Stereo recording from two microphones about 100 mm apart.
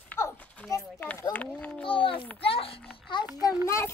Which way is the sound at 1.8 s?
60° left (ahead or behind).